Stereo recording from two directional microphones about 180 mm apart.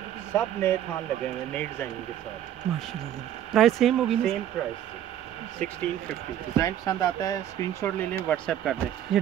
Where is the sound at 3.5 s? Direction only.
Centre (ahead or behind).